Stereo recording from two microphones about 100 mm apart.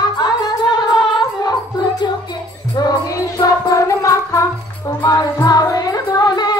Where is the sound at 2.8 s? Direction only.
35° left (ahead or behind).